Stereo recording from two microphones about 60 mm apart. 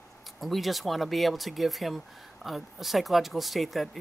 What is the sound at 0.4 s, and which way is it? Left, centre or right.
A woman's voice, centre.